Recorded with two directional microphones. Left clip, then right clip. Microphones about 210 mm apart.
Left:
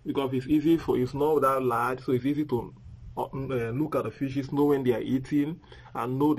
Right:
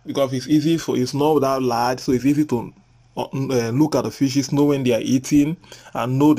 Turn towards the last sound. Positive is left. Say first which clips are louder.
# right 9 dB
turn(degrees=-10)  # may be behind; listen again after turning